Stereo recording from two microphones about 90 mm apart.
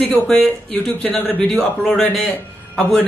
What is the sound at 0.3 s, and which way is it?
A man's voice, 5° left (ahead or behind).